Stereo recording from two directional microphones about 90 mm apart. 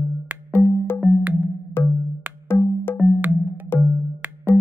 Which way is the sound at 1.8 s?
25° left (ahead or behind).